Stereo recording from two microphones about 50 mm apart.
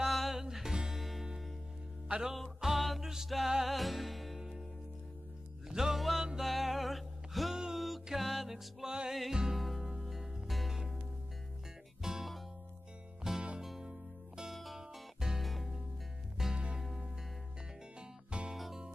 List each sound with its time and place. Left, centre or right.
0.0 s music: centre
2.0 s music: centre
2.3 s music: centre
5.7 s music: centre
8.8 s music: centre
9.1 s music: centre
12.0 s music: centre
14.5 s music: centre
18.5 s music: centre